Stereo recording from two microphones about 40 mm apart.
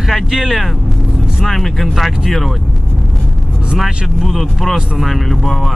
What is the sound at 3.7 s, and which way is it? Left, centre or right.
Speech, centre.